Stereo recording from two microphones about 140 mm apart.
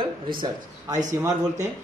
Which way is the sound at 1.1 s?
20° right (ahead or behind).